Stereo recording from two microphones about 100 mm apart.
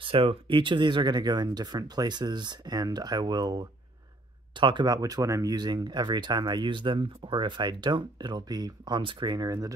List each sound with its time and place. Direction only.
0.0 s speech: 65° right (ahead or behind); by 9.8 s 40° right (ahead or behind)